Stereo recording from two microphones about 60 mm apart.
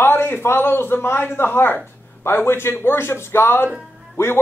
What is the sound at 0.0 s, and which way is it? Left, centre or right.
A man's voice, left.